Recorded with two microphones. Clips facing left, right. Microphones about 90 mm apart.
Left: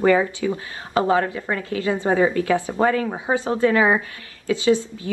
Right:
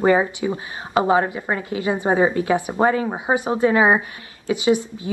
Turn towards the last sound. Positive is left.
turn(degrees=-20)  # may be behind; listen again after turning